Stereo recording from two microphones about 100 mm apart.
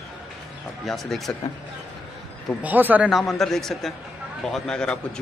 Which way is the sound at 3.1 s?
Centre (ahead or behind).